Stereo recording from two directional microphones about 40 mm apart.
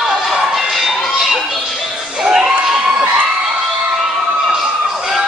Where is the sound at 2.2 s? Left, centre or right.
Centre.